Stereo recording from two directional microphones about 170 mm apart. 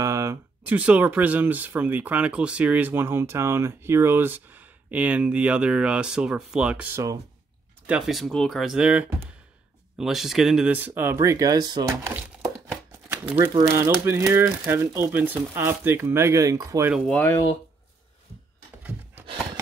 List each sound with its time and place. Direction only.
0.0 s speech: 20° right (ahead or behind)
17.1 s speech: 10° left (ahead or behind)
18.8 s a sound: 10° right (ahead or behind)